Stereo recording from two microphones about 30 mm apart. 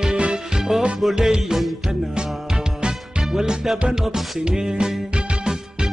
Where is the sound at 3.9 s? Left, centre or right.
Centre.